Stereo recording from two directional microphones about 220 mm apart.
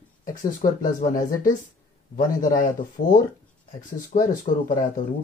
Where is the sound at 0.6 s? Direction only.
35° left (ahead or behind).